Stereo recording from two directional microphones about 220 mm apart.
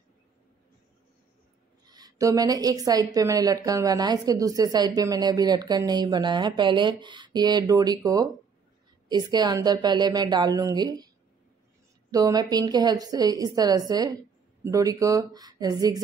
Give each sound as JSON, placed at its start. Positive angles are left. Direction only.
{"t": 1.9, "sound": "a woman's voice", "side_deg": -15}
{"t": 12.1, "sound": "a woman's voice", "side_deg": -15}